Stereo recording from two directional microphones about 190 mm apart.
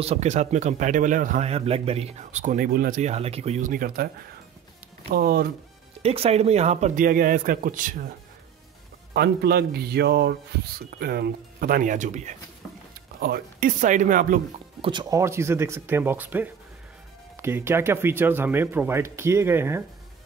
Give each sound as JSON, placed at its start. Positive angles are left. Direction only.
{"t": 0.0, "sound": "a man's voice", "side_deg": -35}
{"t": 5.1, "sound": "speech", "side_deg": -55}
{"t": 6.0, "sound": "speech", "side_deg": -30}
{"t": 9.1, "sound": "a man's voice", "side_deg": -55}
{"t": 13.2, "sound": "speech", "side_deg": -50}
{"t": 14.8, "sound": "speech", "side_deg": -25}